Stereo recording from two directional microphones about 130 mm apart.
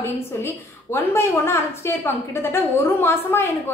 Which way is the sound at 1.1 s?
20° left (ahead or behind).